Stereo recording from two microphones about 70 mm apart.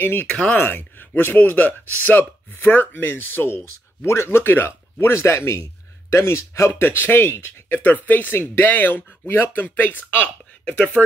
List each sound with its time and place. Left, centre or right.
0.0 s speech: left
0.3 s speech: centre
0.6 s speech: left